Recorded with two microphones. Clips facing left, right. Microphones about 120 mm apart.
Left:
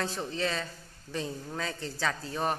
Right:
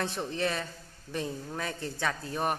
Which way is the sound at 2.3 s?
10° right (ahead or behind).